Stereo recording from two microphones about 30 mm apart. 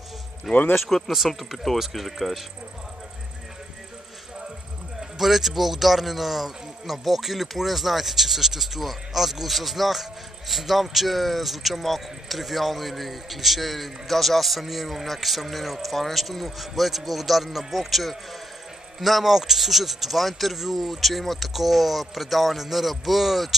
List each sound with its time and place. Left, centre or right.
0.5 s speech: centre
0.8 s speech: centre
1.1 s speech: centre
5.2 s speech: centre